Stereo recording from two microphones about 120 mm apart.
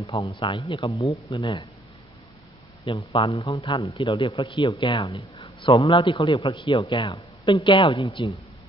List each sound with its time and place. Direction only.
0.2 s a man's voice: 45° left (ahead or behind)
2.9 s a man's voice: 45° left (ahead or behind)